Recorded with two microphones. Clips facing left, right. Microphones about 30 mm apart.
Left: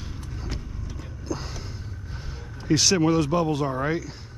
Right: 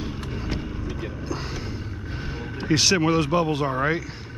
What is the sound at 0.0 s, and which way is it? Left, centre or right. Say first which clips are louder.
Vehicle: right 7 dB; right.